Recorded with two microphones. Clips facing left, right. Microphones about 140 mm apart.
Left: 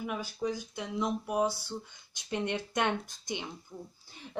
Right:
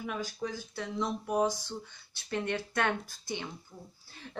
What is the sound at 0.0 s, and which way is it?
Speech, 10° left (ahead or behind).